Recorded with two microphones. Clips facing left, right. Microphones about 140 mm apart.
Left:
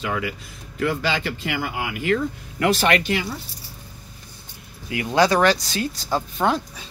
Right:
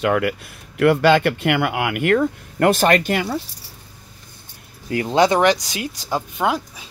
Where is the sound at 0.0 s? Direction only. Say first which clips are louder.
Right 8 dB; 60° right (ahead or behind).